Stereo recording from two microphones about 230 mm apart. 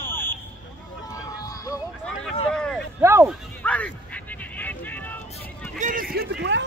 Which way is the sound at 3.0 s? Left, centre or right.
Centre.